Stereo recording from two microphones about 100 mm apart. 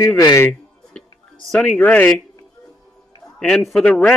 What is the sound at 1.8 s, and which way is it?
Speech, 15° left (ahead or behind).